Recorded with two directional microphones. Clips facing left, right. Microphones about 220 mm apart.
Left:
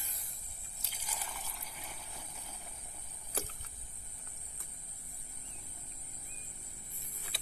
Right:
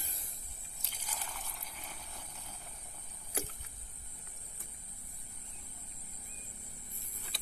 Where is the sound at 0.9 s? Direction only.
5° left (ahead or behind).